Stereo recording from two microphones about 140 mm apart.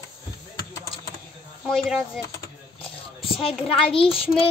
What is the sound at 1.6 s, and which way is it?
Speech, centre (ahead or behind).